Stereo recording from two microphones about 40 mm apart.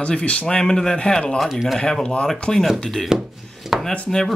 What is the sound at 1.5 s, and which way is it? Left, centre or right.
Speech, centre.